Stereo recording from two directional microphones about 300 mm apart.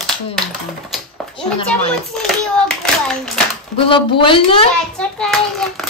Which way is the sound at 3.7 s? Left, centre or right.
Centre.